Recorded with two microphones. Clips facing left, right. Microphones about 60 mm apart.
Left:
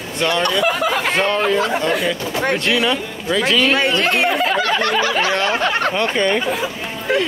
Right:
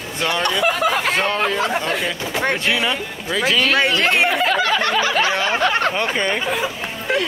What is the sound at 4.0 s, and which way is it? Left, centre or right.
Speech, right.